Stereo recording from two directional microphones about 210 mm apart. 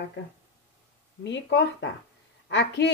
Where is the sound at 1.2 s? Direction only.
55° left (ahead or behind).